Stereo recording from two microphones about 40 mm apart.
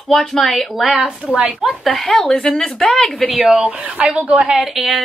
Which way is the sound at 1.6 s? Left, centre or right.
Centre.